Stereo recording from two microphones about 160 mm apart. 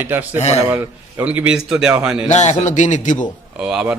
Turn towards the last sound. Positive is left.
turn(degrees=-5)  # may be behind; listen again after turning